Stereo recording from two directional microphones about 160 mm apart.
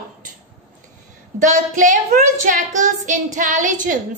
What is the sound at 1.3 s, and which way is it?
Child singing, 55° right (ahead or behind).